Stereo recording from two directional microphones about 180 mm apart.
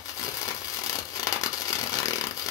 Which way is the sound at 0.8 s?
20° left (ahead or behind).